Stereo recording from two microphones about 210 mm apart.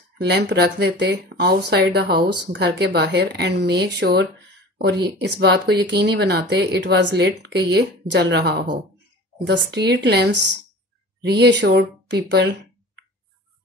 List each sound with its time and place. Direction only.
0.2 s speech: 50° right (ahead or behind)